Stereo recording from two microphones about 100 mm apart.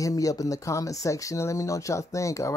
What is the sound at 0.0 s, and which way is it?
Speech, 35° left (ahead or behind).